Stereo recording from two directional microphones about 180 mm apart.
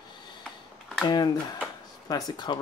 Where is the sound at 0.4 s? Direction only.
Centre (ahead or behind).